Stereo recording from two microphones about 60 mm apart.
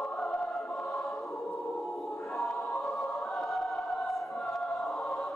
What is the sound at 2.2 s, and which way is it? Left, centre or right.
Choir, centre.